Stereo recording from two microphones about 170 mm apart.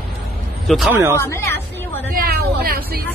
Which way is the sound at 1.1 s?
15° left (ahead or behind).